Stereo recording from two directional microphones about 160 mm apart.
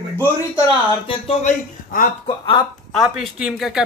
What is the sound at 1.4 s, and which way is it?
Speech, 55° left (ahead or behind).